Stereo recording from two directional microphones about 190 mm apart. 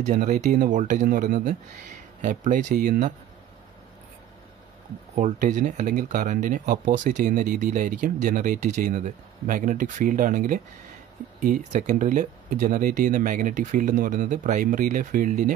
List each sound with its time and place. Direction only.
0.0 s speech: 40° right (ahead or behind)
5.1 s speech: 40° right (ahead or behind)